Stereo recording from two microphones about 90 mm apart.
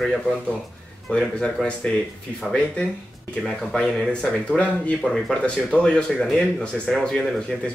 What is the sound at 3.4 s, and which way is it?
Speech, 5° left (ahead or behind).